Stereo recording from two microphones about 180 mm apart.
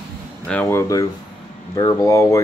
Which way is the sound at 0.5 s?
10° left (ahead or behind).